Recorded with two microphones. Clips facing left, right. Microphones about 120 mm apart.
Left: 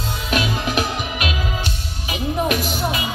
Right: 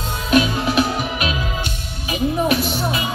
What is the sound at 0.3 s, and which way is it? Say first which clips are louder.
Music: right 6 dB; 40° right (ahead or behind).